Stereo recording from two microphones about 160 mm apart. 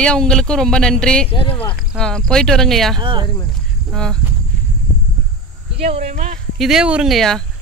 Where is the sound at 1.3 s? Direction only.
35° left (ahead or behind).